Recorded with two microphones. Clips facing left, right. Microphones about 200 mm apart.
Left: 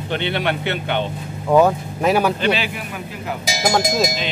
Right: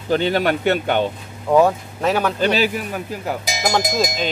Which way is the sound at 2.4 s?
40° right (ahead or behind).